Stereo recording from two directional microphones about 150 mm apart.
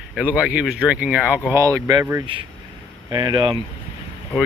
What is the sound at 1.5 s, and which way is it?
Speech, 20° right (ahead or behind).